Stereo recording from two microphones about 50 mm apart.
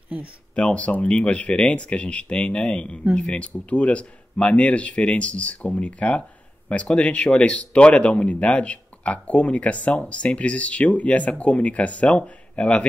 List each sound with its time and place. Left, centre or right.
0.6 s speech: left